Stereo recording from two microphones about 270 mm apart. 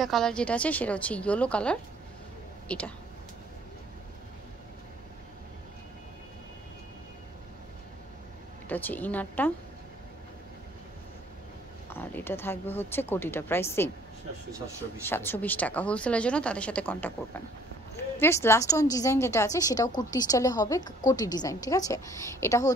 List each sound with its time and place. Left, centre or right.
0.0 s a woman's voice: centre
8.6 s speech: centre
11.9 s speech: centre
15.0 s a woman's voice: centre
18.2 s speech: centre